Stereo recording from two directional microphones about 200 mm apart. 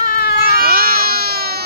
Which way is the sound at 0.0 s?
50° left (ahead or behind).